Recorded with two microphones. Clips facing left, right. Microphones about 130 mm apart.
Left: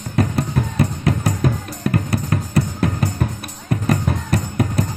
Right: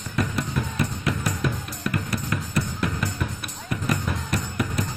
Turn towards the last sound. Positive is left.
turn(degrees=40)  # may be behind; listen again after turning